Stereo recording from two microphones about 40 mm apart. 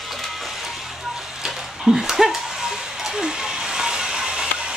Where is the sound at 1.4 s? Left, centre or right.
Centre.